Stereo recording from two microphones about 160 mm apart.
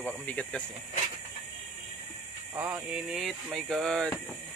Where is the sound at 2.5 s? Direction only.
15° right (ahead or behind).